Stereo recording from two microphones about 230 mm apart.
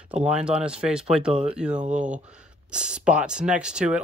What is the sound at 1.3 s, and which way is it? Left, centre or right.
Speech, right.